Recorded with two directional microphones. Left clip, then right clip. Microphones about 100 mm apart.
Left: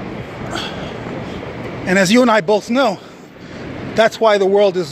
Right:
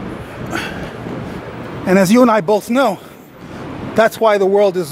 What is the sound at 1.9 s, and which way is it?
Speech, 45° right (ahead or behind).